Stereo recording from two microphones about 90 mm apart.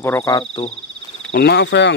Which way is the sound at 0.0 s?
30° left (ahead or behind).